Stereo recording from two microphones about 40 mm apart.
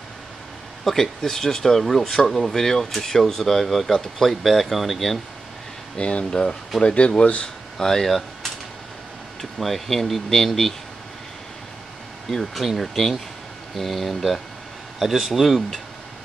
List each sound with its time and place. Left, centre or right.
0.8 s speech: centre
5.9 s speech: left
7.7 s speech: centre
12.3 s speech: centre